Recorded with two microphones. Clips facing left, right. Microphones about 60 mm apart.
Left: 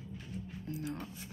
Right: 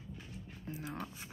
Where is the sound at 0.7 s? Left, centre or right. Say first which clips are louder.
Left 3 dB; right.